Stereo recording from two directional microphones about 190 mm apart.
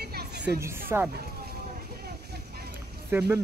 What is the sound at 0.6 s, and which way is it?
Speech, 10° right (ahead or behind).